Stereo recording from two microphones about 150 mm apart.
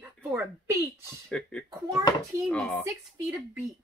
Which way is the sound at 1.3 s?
5° left (ahead or behind).